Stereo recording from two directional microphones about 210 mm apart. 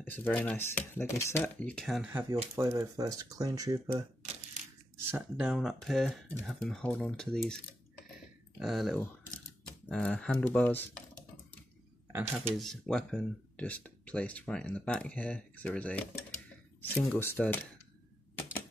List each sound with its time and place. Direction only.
0.0 s speech: 10° left (ahead or behind)
2.2 s speech: 15° right (ahead or behind); by 7.5 s 5° left (ahead or behind)
8.5 s speech: centre (ahead or behind)
12.1 s speech: 10° right (ahead or behind)
12.5 s speech: centre (ahead or behind)